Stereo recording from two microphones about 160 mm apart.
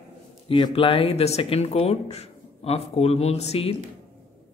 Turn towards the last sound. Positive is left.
turn(degrees=40)  # may be behind; listen again after turning